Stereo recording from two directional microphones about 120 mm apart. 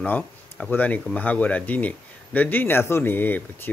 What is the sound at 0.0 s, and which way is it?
Speech, 15° left (ahead or behind).